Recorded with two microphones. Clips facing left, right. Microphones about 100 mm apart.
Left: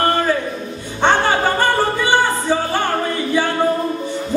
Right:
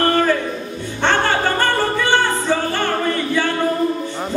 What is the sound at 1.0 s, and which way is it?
Music, 15° left (ahead or behind).